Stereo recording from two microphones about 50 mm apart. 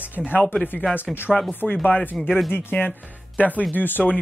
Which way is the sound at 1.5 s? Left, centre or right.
Left.